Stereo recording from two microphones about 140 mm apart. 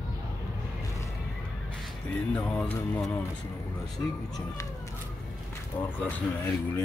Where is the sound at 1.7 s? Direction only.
10° left (ahead or behind).